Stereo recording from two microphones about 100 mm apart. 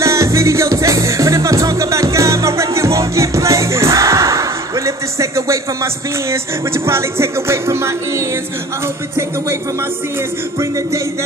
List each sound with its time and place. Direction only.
0.0 s music: 30° right (ahead or behind)